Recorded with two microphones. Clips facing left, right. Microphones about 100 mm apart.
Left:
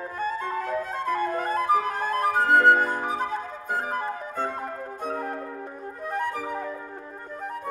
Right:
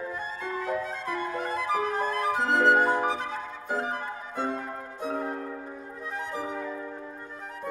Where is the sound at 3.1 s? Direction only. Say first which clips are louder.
Left 3 dB; 45° left (ahead or behind).